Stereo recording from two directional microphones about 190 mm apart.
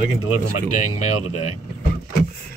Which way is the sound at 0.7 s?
40° left (ahead or behind).